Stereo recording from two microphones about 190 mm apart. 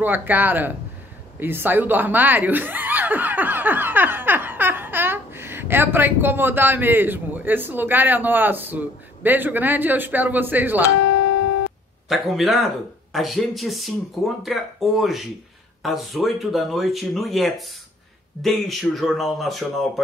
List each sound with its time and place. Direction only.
0.0 s speech: 10° right (ahead or behind)
11.0 s music: 70° left (ahead or behind)
12.1 s speech: centre (ahead or behind)